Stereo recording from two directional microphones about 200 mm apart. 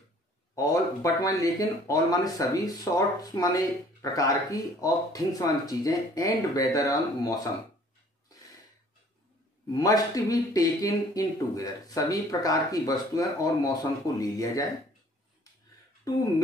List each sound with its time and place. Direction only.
0.6 s speech: 15° left (ahead or behind)
9.7 s speech: 20° left (ahead or behind)